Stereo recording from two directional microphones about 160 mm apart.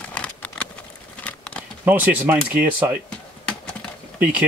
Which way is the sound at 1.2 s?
10° left (ahead or behind).